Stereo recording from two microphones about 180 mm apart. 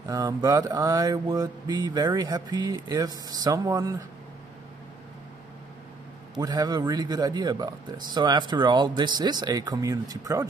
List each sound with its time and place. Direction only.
0.1 s speech: 20° right (ahead or behind)
6.3 s speech: 20° right (ahead or behind)